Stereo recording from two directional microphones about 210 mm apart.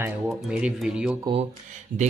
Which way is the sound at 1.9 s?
40° right (ahead or behind).